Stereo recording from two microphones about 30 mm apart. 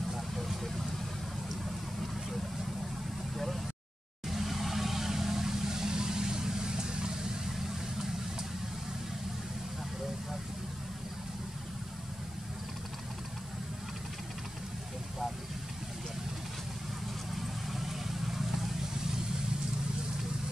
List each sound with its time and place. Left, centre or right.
0.4 s vehicle: centre
4.3 s vehicle: centre; by 7.3 s right
7.5 s vehicle: centre
17.4 s vehicle: centre